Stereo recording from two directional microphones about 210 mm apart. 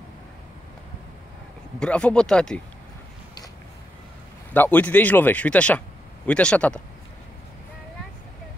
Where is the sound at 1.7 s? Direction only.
5° left (ahead or behind).